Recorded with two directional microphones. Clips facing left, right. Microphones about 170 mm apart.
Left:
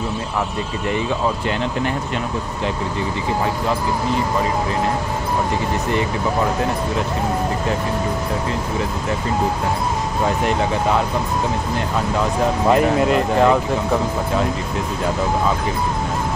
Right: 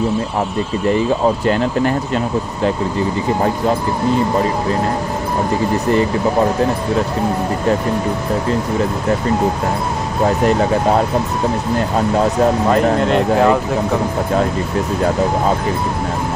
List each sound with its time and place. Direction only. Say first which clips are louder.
0.8 s speech: right 6 dB; 40° right (ahead or behind)
12.6 s speech: right 1 dB; 5° left (ahead or behind)